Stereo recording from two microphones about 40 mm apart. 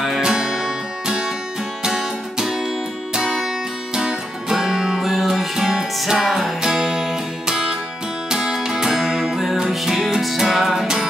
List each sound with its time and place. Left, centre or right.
0.2 s music: centre
3.9 s music: centre
5.0 s music: centre